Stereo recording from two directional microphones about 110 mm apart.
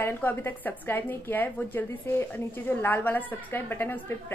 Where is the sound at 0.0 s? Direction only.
20° left (ahead or behind).